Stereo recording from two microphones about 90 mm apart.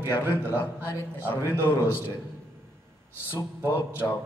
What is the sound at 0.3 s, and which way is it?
A man's voice, 25° left (ahead or behind).